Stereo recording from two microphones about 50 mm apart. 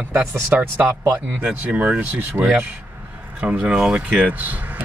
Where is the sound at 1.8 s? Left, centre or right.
Right.